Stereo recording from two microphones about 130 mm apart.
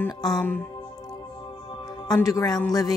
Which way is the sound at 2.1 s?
25° left (ahead or behind).